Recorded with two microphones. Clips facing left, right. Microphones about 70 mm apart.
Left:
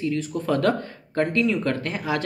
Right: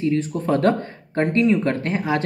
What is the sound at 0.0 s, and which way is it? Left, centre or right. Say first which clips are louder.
Speech: right 4 dB; right.